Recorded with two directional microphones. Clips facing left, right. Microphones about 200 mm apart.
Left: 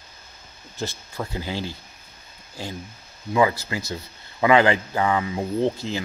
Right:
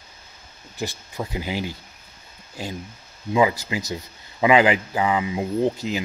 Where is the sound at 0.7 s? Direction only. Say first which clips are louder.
Right 1 dB; 15° right (ahead or behind).